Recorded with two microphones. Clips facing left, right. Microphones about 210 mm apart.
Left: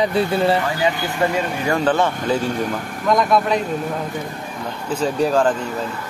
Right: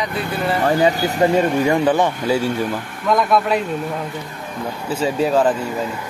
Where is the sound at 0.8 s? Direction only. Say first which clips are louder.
Right 4 dB; 35° right (ahead or behind).